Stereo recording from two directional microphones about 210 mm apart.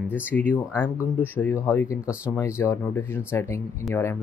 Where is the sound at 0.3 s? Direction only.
5° left (ahead or behind).